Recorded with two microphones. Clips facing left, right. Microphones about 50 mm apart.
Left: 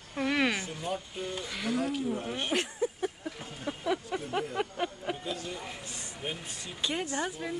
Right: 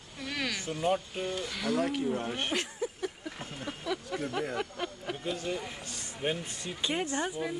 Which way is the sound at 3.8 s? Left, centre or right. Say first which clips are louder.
Left 2 dB; left.